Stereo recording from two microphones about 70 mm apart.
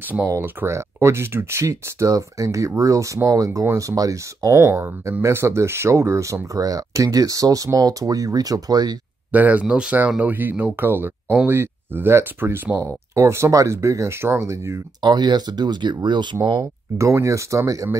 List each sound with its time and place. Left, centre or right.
0.7 s speech: right
9.3 s speech: right
12.8 s speech: right
15.0 s speech: right
17.0 s speech: right